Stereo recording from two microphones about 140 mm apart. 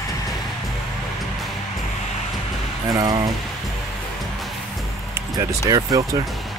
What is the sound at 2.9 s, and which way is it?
Speech, 25° right (ahead or behind).